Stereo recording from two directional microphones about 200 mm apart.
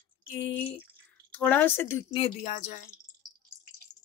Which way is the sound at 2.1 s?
30° left (ahead or behind).